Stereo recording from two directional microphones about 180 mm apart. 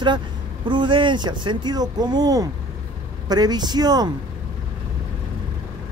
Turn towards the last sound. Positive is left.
turn(degrees=-20)  # may be behind; listen again after turning